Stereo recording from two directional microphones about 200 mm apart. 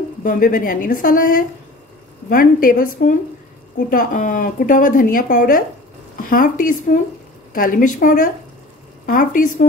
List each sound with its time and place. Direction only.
0.2 s speech: 40° left (ahead or behind)